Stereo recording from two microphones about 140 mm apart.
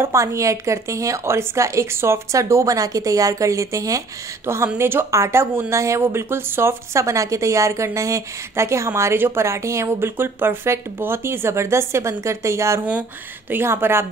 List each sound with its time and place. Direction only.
0.0 s a woman's voice: 20° right (ahead or behind)